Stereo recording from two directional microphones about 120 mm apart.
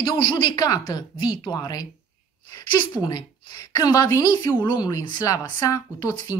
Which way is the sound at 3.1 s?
35° left (ahead or behind).